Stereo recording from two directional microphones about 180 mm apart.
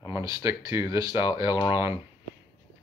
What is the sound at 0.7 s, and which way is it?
Speech, 20° right (ahead or behind).